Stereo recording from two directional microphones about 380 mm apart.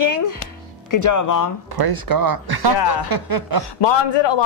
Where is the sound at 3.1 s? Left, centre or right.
Right.